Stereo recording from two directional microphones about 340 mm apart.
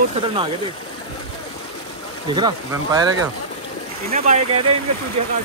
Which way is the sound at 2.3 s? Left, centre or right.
Centre.